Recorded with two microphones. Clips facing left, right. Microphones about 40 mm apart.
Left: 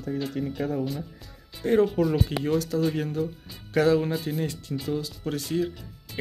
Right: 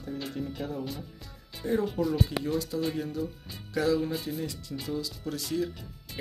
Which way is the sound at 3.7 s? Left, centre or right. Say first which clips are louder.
Left 5 dB; left.